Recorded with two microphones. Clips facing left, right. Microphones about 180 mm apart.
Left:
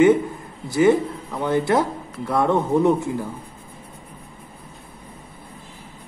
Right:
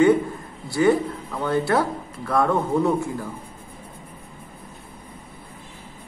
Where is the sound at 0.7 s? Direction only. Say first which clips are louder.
Left 2 dB; 20° left (ahead or behind).